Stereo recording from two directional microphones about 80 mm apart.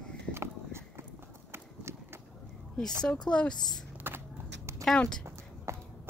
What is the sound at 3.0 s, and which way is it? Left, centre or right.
Speech, centre.